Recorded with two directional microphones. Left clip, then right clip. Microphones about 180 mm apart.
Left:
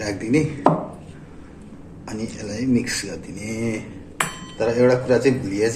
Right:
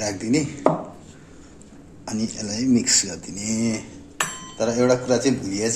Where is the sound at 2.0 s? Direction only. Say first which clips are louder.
Right 1 dB; 65° right (ahead or behind).